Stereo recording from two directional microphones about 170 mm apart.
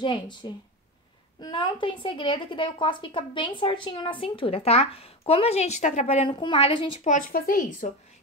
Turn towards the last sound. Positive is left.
turn(degrees=55)  # may be behind; listen again after turning